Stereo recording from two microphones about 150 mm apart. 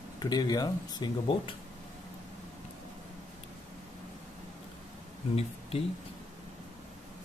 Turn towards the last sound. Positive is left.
turn(degrees=40)  # may be behind; listen again after turning